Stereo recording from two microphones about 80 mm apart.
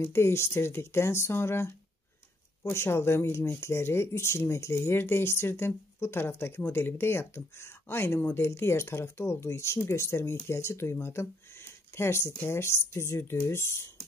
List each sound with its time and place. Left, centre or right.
0.0 s speech: left